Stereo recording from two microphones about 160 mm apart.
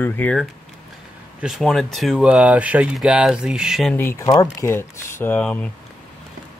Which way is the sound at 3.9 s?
15° left (ahead or behind).